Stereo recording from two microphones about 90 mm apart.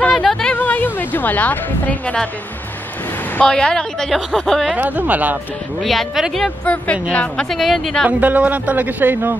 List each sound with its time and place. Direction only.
0.0 s a sound: 10° left (ahead or behind)
0.6 s speech: 20° left (ahead or behind)
3.3 s a woman's voice: 10° left (ahead or behind)
4.7 s speech: 20° right (ahead or behind)
5.8 s speech: centre (ahead or behind)
6.6 s a woman's voice: 15° left (ahead or behind)
7.4 s speech: centre (ahead or behind)
8.1 s speech: 15° right (ahead or behind)